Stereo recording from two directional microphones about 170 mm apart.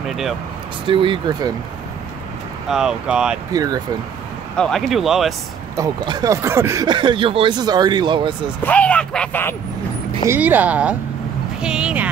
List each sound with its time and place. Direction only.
0.1 s speech: centre (ahead or behind)
0.8 s speech: 30° right (ahead or behind)
2.7 s speech: 5° right (ahead or behind)
3.5 s speech: 20° right (ahead or behind)
4.6 s speech: centre (ahead or behind)
5.8 s speech: 25° right (ahead or behind)
8.6 s speech: 5° left (ahead or behind)
10.3 s speech: 10° right (ahead or behind)